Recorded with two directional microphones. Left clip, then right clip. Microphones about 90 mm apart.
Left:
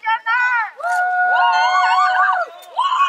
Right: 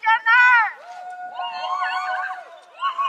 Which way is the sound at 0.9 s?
30° left (ahead or behind).